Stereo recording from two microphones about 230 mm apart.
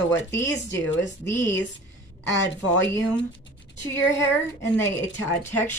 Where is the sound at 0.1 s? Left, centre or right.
Centre.